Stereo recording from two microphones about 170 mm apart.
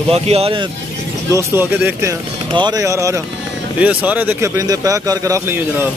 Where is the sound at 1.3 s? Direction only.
15° right (ahead or behind).